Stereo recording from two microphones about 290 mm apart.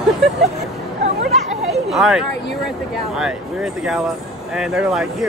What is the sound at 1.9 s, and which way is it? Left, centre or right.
Speech, centre.